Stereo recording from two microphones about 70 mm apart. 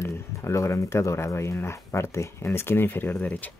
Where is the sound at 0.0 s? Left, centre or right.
Left.